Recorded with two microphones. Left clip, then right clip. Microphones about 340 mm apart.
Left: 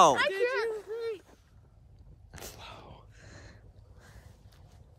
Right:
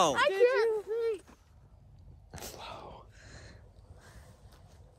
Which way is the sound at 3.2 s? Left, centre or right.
Centre.